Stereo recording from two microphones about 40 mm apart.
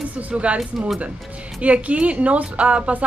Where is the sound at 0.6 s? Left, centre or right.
Centre.